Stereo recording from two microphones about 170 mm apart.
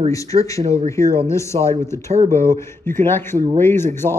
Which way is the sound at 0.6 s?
40° right (ahead or behind).